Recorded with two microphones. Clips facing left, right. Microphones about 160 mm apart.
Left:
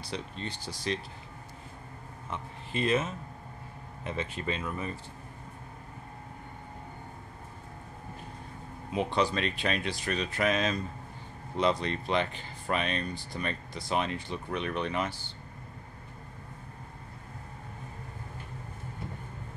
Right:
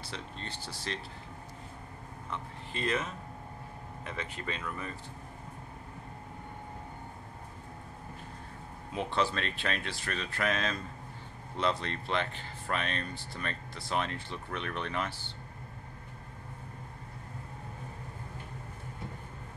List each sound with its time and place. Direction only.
0.1 s speech: 15° left (ahead or behind)
2.7 s speech: 20° left (ahead or behind)
8.9 s speech: 15° left (ahead or behind)